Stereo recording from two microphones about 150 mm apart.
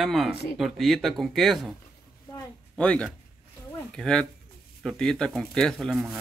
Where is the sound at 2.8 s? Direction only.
5° left (ahead or behind).